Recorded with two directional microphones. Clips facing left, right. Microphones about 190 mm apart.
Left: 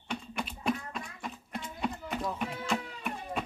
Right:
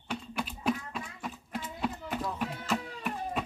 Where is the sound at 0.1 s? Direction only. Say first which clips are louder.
Right 1 dB; centre (ahead or behind).